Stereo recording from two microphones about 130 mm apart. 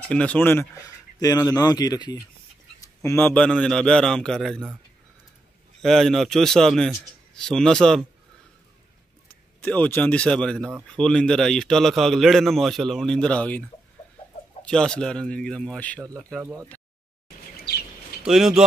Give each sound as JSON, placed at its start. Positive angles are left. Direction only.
{"t": 0.1, "sound": "speech", "side_deg": 10}
{"t": 3.0, "sound": "a man's voice", "side_deg": 20}
{"t": 5.8, "sound": "a man's voice", "side_deg": 5}
{"t": 9.6, "sound": "a man's voice", "side_deg": 15}
{"t": 18.2, "sound": "a man's voice", "side_deg": -5}